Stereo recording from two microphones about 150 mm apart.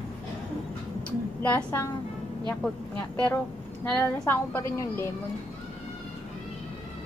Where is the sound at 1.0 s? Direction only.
10° left (ahead or behind).